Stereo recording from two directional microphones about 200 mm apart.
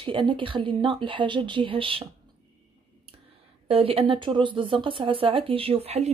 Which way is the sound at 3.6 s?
30° right (ahead or behind).